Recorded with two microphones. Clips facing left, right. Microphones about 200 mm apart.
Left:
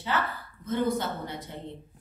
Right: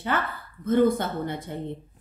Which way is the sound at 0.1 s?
55° right (ahead or behind).